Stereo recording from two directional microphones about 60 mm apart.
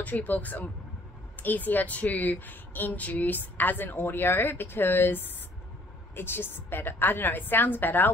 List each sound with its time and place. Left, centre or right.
0.0 s speech: left